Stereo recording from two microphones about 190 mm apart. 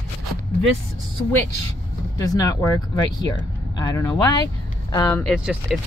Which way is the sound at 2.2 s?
20° left (ahead or behind).